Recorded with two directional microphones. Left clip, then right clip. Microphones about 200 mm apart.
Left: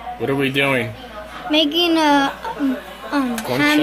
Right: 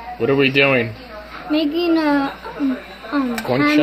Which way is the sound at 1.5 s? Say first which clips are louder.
Left 2 dB; 5° left (ahead or behind).